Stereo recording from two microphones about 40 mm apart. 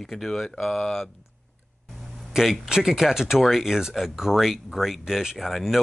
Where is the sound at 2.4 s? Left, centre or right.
Centre.